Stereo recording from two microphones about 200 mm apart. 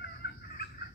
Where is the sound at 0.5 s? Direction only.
50° left (ahead or behind).